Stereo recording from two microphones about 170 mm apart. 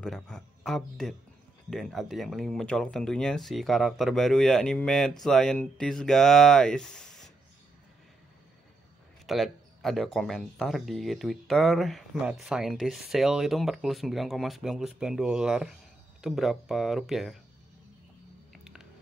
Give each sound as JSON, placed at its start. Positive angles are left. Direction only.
{"t": 0.0, "sound": "speech", "side_deg": 5}
{"t": 9.2, "sound": "speech", "side_deg": 0}
{"t": 18.5, "sound": "a sound", "side_deg": -5}